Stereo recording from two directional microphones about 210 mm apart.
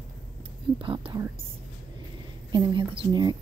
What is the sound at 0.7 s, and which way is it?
Speech, 25° right (ahead or behind).